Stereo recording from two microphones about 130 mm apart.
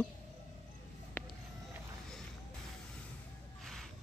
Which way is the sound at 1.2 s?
15° left (ahead or behind).